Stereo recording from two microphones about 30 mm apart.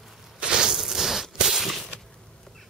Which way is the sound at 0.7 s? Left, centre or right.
Centre.